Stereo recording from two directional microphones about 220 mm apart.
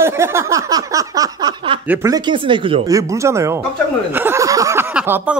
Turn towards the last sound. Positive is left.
turn(degrees=-10)  # may be behind; listen again after turning